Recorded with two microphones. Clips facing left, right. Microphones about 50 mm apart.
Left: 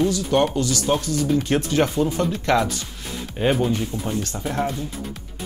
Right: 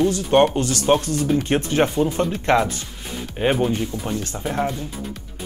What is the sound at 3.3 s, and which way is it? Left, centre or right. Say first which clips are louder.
Speech: right 1 dB; centre.